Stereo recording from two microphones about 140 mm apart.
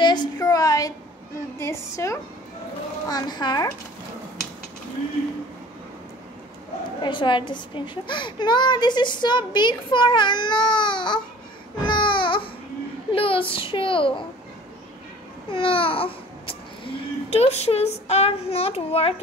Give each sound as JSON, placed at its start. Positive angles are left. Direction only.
{"t": 0.0, "sound": "a sound", "side_deg": 35}
{"t": 1.6, "sound": "speech", "side_deg": 20}
{"t": 7.0, "sound": "a child's voice", "side_deg": 35}
{"t": 11.8, "sound": "babbling", "side_deg": 35}
{"t": 13.1, "sound": "a child's voice", "side_deg": 40}
{"t": 15.5, "sound": "speech", "side_deg": 40}